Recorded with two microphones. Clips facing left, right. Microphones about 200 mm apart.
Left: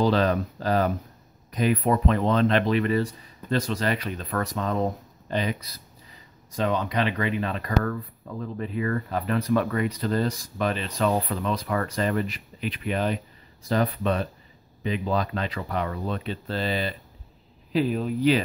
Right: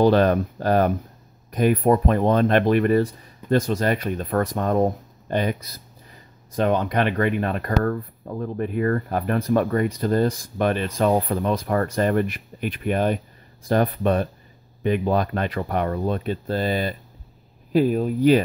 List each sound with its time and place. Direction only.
0.0 s speech: 55° right (ahead or behind)